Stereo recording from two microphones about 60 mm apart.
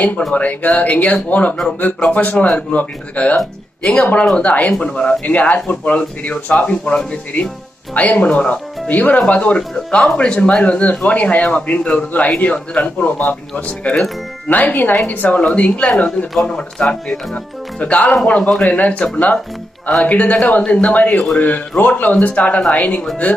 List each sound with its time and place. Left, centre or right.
0.3 s speech: left
3.3 s speech: centre
4.0 s speech: left
5.2 s speech: left
16.3 s speech: centre
17.7 s speech: left